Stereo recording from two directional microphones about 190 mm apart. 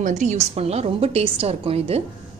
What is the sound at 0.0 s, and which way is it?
A woman's voice, 40° right (ahead or behind).